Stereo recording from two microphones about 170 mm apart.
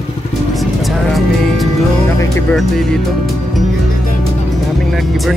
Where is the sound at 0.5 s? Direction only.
Centre (ahead or behind).